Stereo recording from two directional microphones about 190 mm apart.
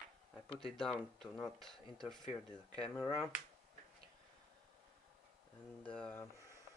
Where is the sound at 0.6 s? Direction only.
5° left (ahead or behind).